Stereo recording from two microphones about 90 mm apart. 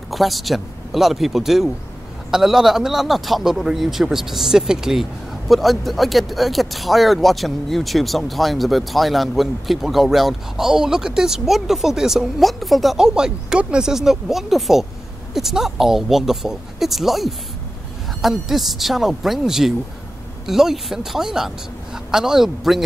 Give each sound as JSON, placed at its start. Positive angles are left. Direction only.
{"t": 0.1, "sound": "speech", "side_deg": 0}